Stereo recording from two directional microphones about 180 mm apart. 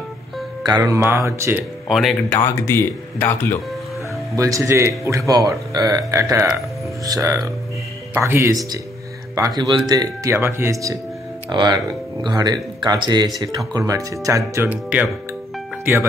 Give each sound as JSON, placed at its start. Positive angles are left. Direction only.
{"t": 0.7, "sound": "a man's voice", "side_deg": -20}
{"t": 2.3, "sound": "speech", "side_deg": 15}
{"t": 4.4, "sound": "a man's voice", "side_deg": -20}
{"t": 9.6, "sound": "a man's voice", "side_deg": -20}